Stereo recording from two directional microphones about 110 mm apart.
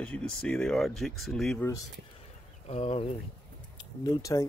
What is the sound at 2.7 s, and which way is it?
Speech, 70° left (ahead or behind).